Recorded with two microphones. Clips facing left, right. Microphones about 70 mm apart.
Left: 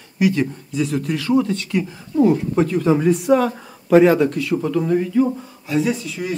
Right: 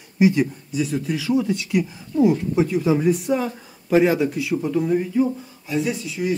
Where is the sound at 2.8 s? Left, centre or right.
Left.